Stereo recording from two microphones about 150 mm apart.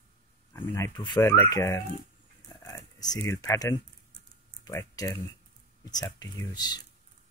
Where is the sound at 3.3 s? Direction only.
20° left (ahead or behind).